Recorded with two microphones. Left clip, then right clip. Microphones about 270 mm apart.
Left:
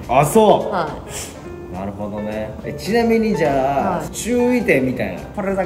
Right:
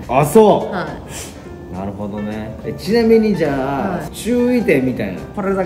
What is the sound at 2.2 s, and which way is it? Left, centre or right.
Speech, centre.